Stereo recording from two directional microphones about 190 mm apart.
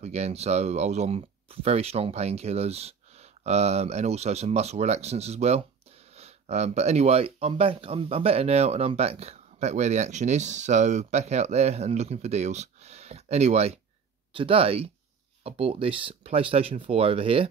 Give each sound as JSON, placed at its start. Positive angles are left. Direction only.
{"t": 0.0, "sound": "speech", "side_deg": -35}